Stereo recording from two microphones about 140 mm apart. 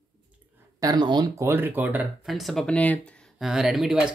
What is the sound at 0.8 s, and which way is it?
Speech, 30° right (ahead or behind).